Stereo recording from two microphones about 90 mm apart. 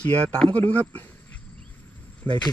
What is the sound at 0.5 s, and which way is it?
Speech, 15° left (ahead or behind).